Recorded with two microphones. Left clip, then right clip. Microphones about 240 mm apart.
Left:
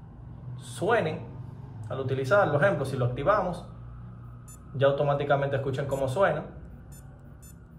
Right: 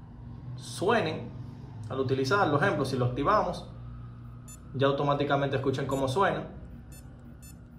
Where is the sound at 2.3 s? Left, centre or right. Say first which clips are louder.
Left 5 dB; centre.